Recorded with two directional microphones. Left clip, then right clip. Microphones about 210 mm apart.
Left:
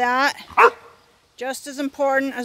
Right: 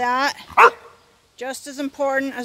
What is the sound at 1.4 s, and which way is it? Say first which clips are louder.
Speech: left 1 dB; 35° left (ahead or behind).